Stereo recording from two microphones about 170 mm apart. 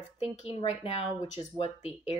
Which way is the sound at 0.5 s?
35° left (ahead or behind).